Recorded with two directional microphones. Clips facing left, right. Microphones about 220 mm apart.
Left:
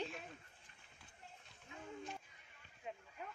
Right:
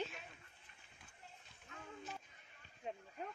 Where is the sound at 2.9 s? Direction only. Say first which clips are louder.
Right 3 dB; 30° right (ahead or behind).